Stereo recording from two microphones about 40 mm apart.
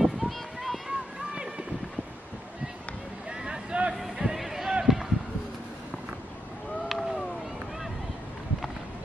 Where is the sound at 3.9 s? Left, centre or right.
Centre.